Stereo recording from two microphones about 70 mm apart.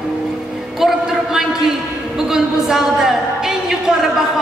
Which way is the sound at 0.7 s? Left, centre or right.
Centre.